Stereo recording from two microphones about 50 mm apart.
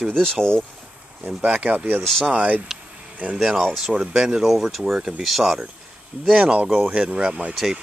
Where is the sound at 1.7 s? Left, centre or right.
Right.